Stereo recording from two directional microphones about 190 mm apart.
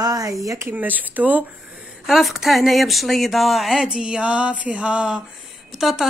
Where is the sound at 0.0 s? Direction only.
20° right (ahead or behind).